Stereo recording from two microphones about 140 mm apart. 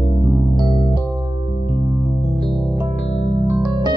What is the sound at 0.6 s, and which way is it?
Electric piano, 30° right (ahead or behind).